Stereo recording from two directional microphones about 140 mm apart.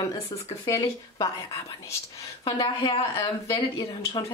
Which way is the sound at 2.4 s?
30° left (ahead or behind).